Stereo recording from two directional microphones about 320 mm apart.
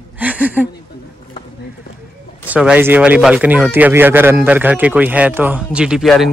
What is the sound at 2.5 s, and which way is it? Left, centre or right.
Speech, centre.